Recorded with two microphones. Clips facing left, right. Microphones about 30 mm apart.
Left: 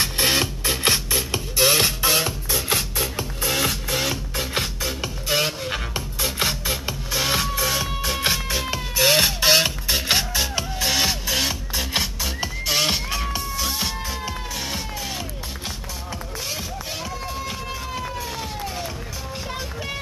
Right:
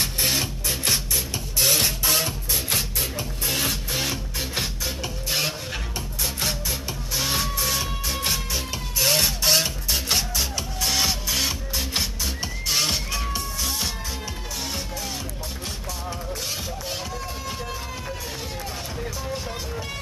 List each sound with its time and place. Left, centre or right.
0.0 s music: left
3.5 s music: centre; by 7.3 s left
7.4 s music: centre
8.0 s music: left